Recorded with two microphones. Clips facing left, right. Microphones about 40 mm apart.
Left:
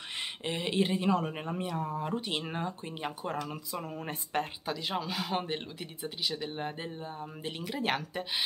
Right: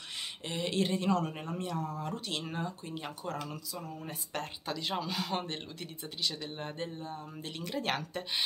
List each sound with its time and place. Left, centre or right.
0.5 s speech: centre
3.7 s speech: left
4.6 s speech: centre